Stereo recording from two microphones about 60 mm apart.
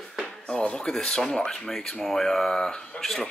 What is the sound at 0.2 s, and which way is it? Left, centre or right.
A man's voice, centre.